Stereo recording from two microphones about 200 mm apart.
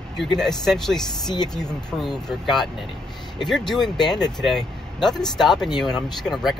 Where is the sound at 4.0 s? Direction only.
20° left (ahead or behind).